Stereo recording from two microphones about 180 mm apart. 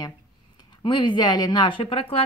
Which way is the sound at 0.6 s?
25° left (ahead or behind).